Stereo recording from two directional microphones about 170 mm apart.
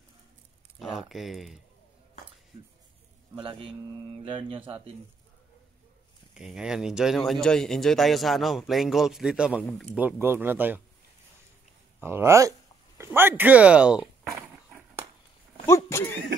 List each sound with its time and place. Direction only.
0.7 s speech: centre (ahead or behind)
3.3 s speech: 30° right (ahead or behind)
6.3 s speech: 5° right (ahead or behind)
9.6 s speech: 10° left (ahead or behind)
10.2 s speech: 15° right (ahead or behind)
12.0 s speech: 15° right (ahead or behind)
15.6 s speech: 15° left (ahead or behind)